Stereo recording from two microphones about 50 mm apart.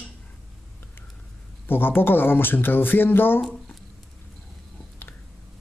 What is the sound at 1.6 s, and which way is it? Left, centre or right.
Speech, left.